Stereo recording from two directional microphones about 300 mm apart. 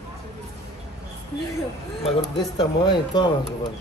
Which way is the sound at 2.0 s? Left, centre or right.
Centre.